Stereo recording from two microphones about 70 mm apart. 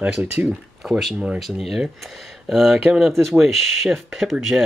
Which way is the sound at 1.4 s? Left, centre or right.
Centre.